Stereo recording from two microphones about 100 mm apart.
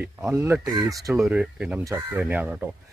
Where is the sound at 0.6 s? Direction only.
40° right (ahead or behind).